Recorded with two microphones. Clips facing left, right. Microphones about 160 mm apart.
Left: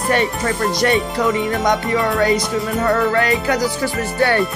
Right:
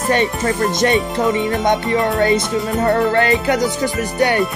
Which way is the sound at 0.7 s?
20° right (ahead or behind).